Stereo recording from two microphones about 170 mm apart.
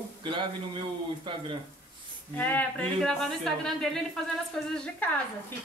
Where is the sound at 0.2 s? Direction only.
30° right (ahead or behind).